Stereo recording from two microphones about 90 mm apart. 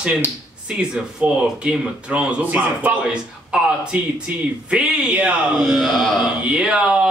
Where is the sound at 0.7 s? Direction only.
10° right (ahead or behind).